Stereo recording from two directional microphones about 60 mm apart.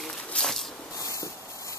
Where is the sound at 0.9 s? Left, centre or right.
Left.